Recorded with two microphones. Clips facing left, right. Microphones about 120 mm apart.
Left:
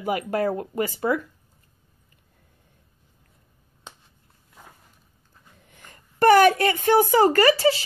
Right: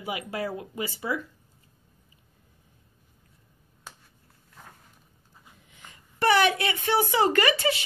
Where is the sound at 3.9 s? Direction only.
20° left (ahead or behind).